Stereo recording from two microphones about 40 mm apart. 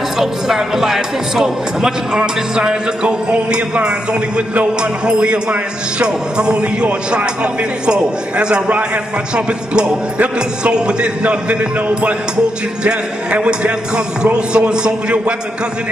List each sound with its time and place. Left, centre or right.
0.2 s speech: centre; by 15.3 s right